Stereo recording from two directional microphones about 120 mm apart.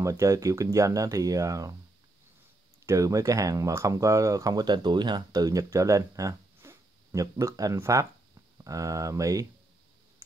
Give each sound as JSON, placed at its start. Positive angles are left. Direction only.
{"t": 0.0, "sound": "speech", "side_deg": -25}
{"t": 2.9, "sound": "speech", "side_deg": -30}